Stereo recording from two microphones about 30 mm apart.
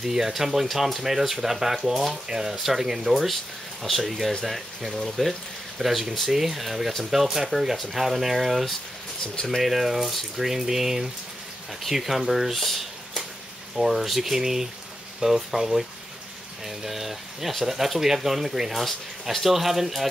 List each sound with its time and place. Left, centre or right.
0.0 s speech: centre
1.0 s speech: centre
3.9 s speech: centre
5.8 s speech: centre
12.5 s speech: centre
13.8 s speech: centre